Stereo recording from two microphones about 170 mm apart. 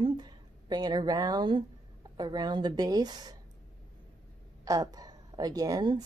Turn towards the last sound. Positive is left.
turn(degrees=-25)  # may be behind; listen again after turning